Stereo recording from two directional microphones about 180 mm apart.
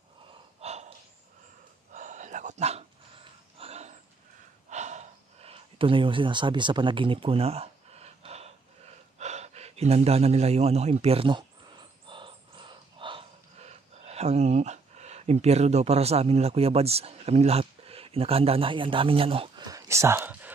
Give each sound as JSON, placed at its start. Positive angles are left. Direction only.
{"t": 0.6, "sound": "snort", "side_deg": -35}
{"t": 2.0, "sound": "a sound", "side_deg": -45}
{"t": 4.6, "sound": "gasp", "side_deg": -40}
{"t": 9.2, "sound": "speech", "side_deg": -40}
{"t": 12.1, "sound": "crow", "side_deg": -25}